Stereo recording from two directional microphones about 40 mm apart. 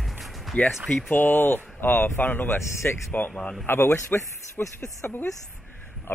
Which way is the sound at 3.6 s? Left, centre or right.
Left.